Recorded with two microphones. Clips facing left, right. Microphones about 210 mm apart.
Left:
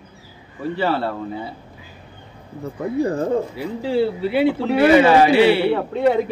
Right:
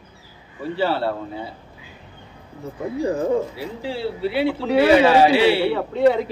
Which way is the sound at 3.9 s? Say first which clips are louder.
Left 5 dB; 50° left (ahead or behind).